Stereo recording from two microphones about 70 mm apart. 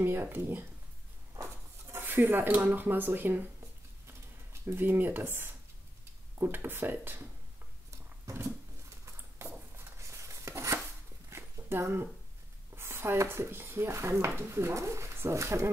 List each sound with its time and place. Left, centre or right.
0.0 s speech: right
1.3 s a sound: right
2.0 s speech: right
4.1 s a sound: right
6.3 s speech: right
8.3 s speech: right
9.0 s a sound: right
12.7 s speech: right
13.8 s speech: right